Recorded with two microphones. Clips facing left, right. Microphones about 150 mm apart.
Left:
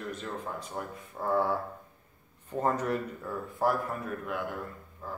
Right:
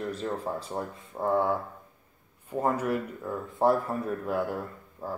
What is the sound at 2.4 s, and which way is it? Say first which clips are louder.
Speech: right 2 dB; 10° right (ahead or behind).